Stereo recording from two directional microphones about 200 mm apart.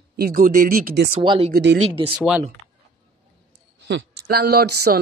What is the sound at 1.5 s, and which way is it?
Speech, 55° right (ahead or behind).